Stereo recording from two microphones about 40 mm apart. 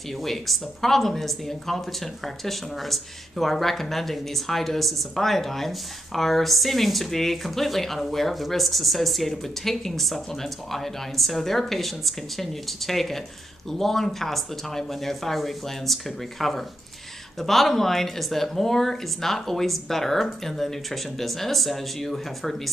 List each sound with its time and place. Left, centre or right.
0.1 s speech: centre